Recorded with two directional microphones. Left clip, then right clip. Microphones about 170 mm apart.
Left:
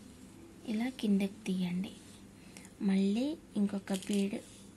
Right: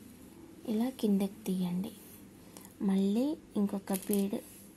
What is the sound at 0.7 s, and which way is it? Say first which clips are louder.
A woman's voice: right 3 dB; 35° right (ahead or behind).